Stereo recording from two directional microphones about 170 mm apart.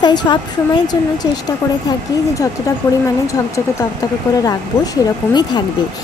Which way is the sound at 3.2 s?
15° left (ahead or behind).